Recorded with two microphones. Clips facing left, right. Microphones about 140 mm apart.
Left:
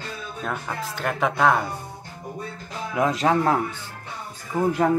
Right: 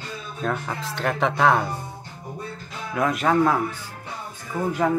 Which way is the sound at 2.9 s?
25° left (ahead or behind).